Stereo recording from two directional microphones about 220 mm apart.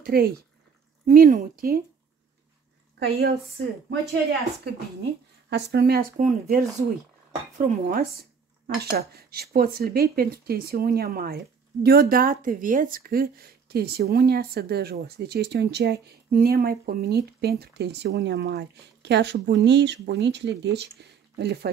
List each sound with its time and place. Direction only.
0.0 s speech: 45° right (ahead or behind)
3.0 s speech: 50° right (ahead or behind)
5.5 s speech: 45° right (ahead or behind)